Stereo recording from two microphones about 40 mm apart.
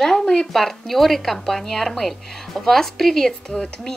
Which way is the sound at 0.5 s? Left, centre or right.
Centre.